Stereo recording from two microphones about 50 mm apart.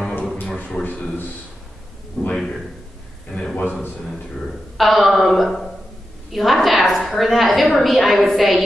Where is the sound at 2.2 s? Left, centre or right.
Centre.